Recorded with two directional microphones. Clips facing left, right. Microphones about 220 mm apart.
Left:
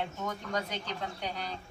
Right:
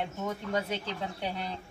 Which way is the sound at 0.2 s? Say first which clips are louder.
Right 6 dB; 25° right (ahead or behind).